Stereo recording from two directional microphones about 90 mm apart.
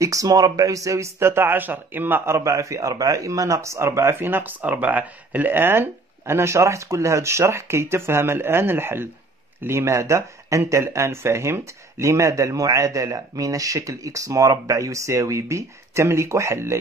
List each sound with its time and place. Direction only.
0.0 s speech: 40° right (ahead or behind)